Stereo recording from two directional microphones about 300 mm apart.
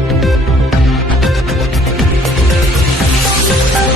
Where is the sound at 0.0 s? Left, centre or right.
Centre.